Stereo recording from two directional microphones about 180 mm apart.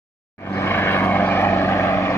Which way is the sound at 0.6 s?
10° left (ahead or behind).